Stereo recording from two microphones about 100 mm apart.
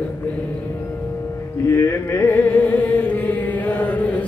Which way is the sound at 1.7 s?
25° left (ahead or behind).